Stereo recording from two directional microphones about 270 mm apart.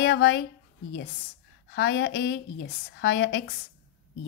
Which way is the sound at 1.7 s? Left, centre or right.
Left.